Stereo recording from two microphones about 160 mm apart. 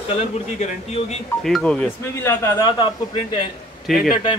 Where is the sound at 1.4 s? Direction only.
5° left (ahead or behind); by 3.2 s 30° left (ahead or behind).